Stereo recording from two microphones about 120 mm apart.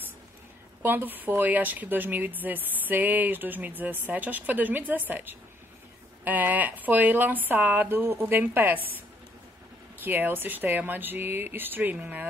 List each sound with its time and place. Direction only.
0.8 s a woman's voice: 15° right (ahead or behind)